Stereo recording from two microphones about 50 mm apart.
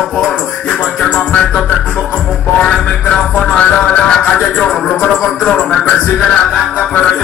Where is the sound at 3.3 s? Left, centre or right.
Left.